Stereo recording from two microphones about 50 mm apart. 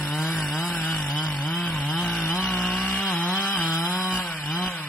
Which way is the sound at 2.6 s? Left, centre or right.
Centre.